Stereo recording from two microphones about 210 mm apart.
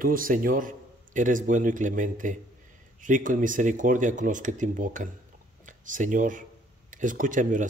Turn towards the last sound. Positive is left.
turn(degrees=-40)  # may be behind; listen again after turning